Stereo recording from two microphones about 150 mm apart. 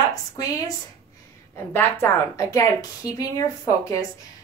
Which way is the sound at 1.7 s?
15° left (ahead or behind).